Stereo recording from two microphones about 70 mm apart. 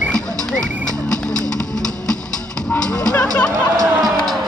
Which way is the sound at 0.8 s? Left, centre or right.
Centre.